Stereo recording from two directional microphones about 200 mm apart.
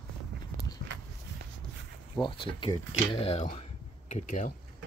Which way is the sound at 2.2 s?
25° left (ahead or behind).